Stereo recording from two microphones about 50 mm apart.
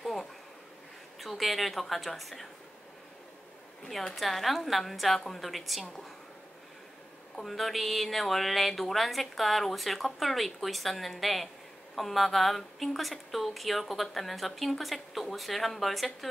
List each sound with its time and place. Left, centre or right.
0.0 s a sound: centre
1.2 s a woman's voice: centre
3.9 s a woman's voice: centre
7.3 s a woman's voice: centre